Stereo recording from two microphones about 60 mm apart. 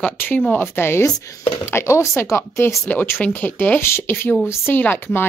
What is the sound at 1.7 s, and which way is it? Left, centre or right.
Speech, left.